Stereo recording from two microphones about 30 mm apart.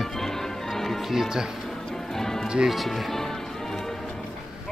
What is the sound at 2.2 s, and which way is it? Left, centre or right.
Music, centre.